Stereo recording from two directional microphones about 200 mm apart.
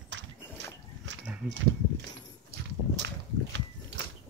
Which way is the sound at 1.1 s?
65° right (ahead or behind).